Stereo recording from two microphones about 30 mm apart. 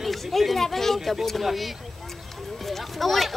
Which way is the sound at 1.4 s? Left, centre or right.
Centre.